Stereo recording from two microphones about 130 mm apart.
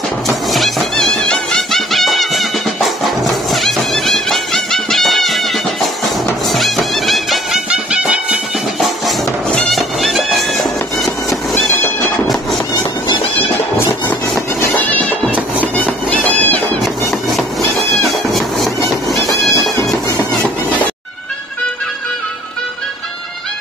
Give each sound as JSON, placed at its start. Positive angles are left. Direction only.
{"t": 0.5, "sound": "music", "side_deg": 0}
{"t": 14.8, "sound": "music", "side_deg": 10}
{"t": 16.8, "sound": "a sound", "side_deg": 0}
{"t": 18.3, "sound": "music", "side_deg": 0}